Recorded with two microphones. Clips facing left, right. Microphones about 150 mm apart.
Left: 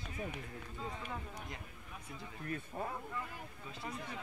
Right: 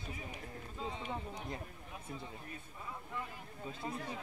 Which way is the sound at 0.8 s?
25° right (ahead or behind).